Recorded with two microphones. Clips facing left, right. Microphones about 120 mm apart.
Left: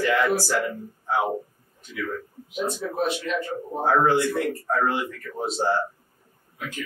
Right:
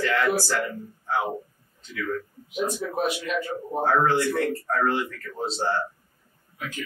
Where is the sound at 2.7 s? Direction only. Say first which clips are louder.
Left 1 dB; 15° right (ahead or behind).